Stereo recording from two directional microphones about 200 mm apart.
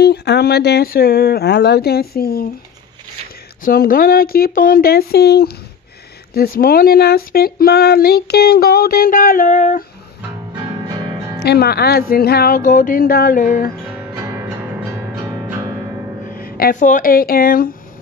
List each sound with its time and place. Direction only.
0.0 s speech: 55° left (ahead or behind)
3.6 s speech: 45° left (ahead or behind)
11.3 s speech: 55° left (ahead or behind)
13.9 s music: 10° right (ahead or behind)
16.3 s speech: 50° left (ahead or behind)